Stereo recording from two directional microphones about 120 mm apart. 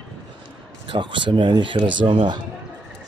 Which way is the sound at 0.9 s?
45° right (ahead or behind).